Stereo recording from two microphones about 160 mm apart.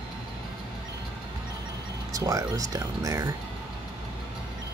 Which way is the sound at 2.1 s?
20° right (ahead or behind).